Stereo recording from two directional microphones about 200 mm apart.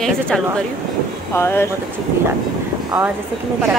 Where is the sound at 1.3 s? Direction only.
10° left (ahead or behind).